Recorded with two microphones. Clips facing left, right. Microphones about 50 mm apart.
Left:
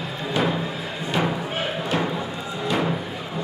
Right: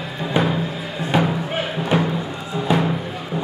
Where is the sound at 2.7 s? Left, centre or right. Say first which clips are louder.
Right 5 dB; centre.